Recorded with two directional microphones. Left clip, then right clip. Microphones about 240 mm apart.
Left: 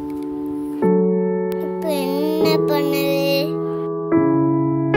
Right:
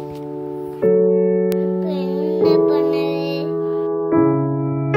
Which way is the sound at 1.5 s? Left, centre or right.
Left.